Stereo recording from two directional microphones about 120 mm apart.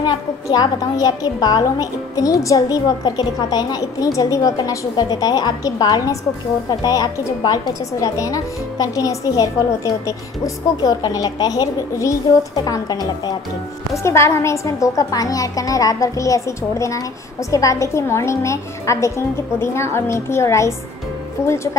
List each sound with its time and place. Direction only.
0.0 s a woman's voice: 35° left (ahead or behind)
13.9 s a woman's voice: 20° left (ahead or behind)